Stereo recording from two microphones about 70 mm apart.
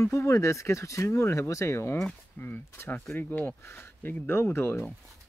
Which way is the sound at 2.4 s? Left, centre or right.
Left.